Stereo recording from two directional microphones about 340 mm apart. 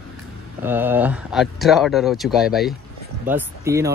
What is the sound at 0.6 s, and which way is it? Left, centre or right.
Speech, centre.